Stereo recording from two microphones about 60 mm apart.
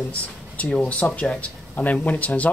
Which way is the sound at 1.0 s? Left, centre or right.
Left.